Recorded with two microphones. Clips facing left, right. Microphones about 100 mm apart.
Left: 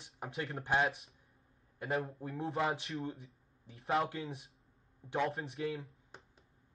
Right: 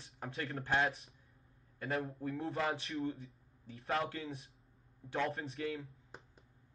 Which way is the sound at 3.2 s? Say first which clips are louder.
Right 4 dB; 30° left (ahead or behind).